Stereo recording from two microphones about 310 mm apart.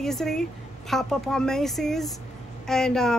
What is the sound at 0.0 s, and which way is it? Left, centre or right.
Speech, centre.